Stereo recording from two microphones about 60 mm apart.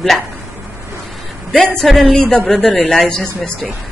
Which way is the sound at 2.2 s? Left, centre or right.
Centre.